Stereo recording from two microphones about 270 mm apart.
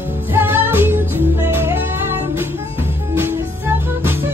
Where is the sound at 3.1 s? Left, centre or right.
Centre.